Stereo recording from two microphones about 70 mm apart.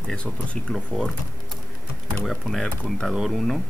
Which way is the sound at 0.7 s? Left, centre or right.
Centre.